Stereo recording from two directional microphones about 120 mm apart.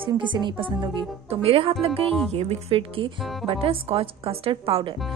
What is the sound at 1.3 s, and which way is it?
A woman's voice, 55° right (ahead or behind).